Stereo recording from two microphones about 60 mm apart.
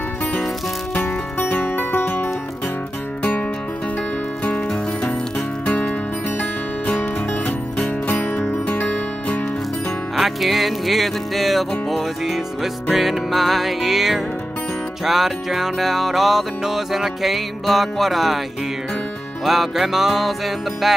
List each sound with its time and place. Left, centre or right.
1.0 s music: left
5.7 s music: centre
10.1 s music: centre
12.9 s music: centre
19.4 s music: centre